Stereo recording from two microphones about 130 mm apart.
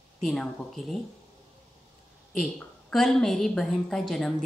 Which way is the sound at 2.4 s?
5° left (ahead or behind).